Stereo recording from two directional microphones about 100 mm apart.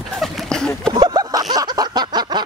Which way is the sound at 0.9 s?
45° right (ahead or behind).